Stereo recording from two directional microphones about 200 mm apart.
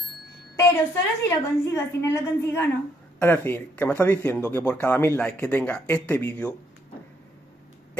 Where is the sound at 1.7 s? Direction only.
15° left (ahead or behind).